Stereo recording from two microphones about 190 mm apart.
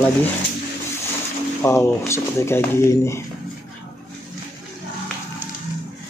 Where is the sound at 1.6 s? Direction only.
15° left (ahead or behind).